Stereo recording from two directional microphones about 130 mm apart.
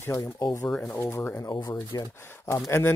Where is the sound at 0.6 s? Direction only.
10° left (ahead or behind).